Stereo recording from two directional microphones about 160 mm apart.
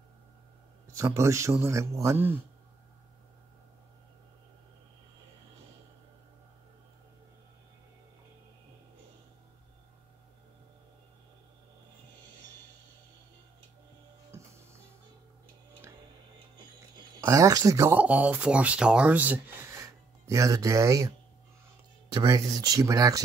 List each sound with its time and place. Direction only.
0.9 s a man's voice: 20° right (ahead or behind)
14.3 s music: 15° right (ahead or behind)
16.9 s speech: 20° right (ahead or behind)
22.1 s speech: 20° right (ahead or behind)